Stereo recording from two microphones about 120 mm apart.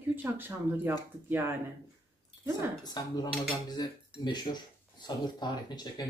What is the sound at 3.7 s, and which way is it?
Cutlery, 35° left (ahead or behind).